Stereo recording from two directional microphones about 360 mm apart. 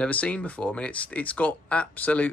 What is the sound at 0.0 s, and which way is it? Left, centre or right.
Speech, centre.